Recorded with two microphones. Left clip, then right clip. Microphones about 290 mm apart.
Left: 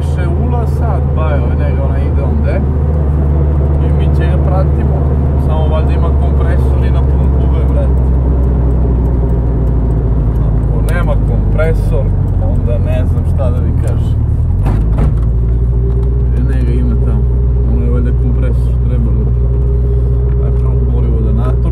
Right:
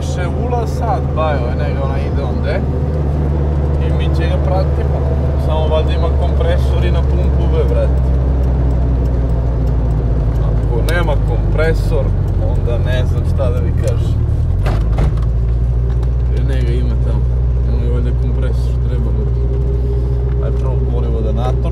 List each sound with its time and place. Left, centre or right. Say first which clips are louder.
11.0 s vehicle: even; right